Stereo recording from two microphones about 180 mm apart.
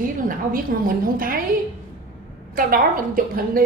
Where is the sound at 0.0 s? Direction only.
50° right (ahead or behind).